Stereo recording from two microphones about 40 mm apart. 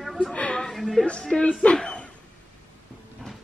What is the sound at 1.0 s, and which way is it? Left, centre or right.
Speech, left.